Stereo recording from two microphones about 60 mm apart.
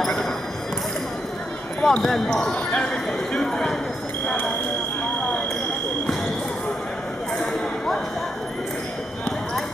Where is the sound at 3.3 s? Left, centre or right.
Centre.